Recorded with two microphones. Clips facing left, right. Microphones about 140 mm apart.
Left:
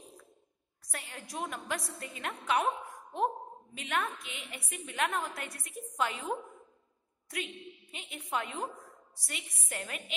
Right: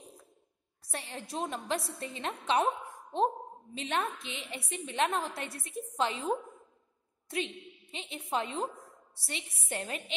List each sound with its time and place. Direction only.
0.8 s a woman's voice: 30° right (ahead or behind)
7.2 s a woman's voice: 25° right (ahead or behind)